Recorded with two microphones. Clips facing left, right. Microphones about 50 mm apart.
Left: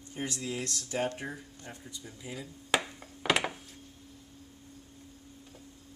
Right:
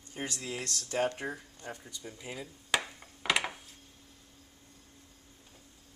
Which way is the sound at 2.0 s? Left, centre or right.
Right.